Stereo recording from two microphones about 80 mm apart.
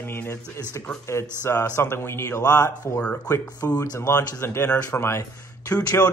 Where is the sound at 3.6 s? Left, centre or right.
Left.